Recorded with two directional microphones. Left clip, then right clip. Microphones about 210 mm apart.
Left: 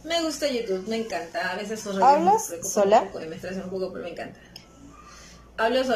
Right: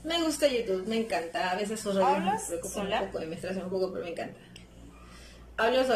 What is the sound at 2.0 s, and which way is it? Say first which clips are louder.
Speech: left 9 dB; 25° left (ahead or behind).